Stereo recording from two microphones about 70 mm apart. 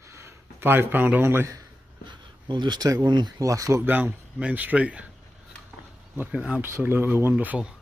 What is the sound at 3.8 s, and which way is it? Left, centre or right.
Speech, right.